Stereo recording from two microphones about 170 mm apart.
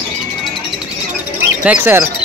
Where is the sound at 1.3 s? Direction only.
10° right (ahead or behind).